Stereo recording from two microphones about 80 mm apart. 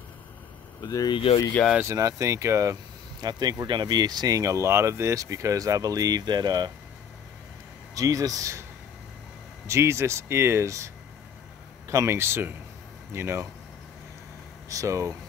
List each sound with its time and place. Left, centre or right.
0.7 s speech: left
1.9 s speech: right
7.9 s speech: right
9.7 s speech: right
11.9 s speech: right
14.7 s speech: right